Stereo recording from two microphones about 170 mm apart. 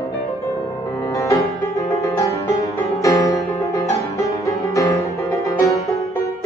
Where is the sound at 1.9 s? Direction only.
20° left (ahead or behind).